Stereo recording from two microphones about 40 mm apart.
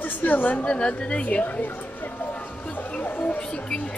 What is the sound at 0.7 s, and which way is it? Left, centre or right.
Speech, left.